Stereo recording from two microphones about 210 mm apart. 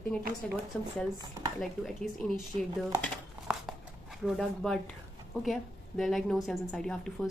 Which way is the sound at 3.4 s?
Centre (ahead or behind).